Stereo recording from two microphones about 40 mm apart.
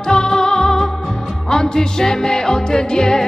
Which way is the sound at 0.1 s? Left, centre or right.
Centre.